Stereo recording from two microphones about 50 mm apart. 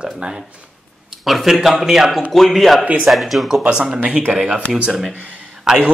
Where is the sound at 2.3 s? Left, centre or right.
Centre.